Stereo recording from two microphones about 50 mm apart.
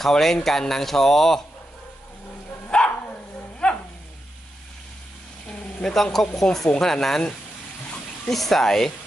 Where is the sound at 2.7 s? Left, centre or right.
Centre.